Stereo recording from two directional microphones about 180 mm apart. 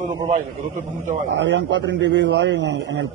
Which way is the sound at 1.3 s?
80° right.